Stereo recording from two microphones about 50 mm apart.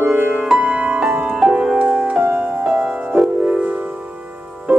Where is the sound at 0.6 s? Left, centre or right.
Right.